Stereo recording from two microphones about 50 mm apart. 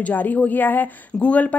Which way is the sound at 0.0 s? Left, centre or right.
Left.